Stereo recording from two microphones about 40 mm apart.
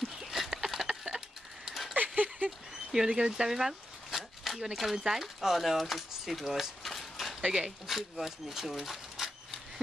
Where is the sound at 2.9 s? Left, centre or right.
Centre.